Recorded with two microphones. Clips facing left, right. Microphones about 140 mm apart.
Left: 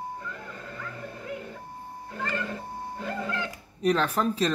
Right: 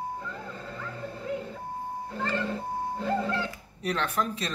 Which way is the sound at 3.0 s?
30° right (ahead or behind).